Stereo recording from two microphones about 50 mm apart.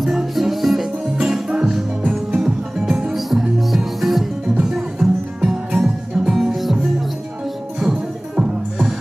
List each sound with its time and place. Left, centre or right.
0.0 s music: centre
1.1 s music: centre
4.9 s music: centre
7.8 s music: centre